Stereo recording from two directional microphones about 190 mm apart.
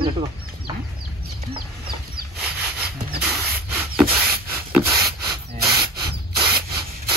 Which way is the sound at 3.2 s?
5° right (ahead or behind).